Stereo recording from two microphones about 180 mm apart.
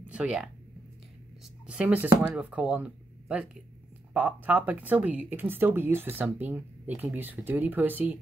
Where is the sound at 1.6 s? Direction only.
5° right (ahead or behind).